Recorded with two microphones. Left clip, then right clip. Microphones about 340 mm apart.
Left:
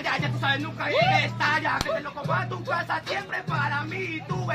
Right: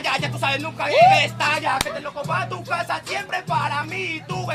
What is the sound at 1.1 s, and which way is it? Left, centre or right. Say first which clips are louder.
Music: right 5 dB; centre.